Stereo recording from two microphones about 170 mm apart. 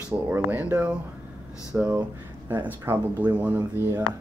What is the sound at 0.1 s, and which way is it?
Speech, 10° right (ahead or behind).